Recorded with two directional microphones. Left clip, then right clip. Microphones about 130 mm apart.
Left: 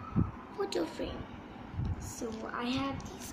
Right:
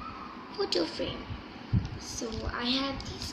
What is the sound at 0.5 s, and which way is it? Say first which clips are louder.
Speech: right 4 dB; 10° left (ahead or behind).